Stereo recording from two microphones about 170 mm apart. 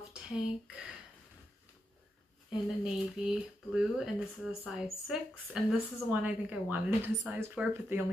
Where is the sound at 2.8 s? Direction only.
5° right (ahead or behind).